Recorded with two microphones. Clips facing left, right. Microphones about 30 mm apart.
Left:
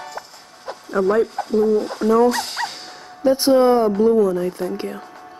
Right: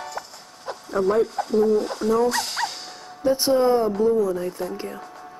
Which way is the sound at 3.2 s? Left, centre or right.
Left.